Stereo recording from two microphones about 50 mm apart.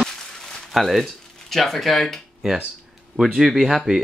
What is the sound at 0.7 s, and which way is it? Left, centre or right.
Speech, centre.